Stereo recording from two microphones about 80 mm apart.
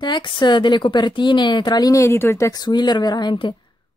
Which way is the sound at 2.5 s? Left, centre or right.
Left.